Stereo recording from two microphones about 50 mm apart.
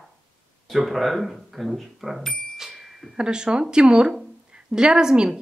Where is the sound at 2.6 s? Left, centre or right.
Centre.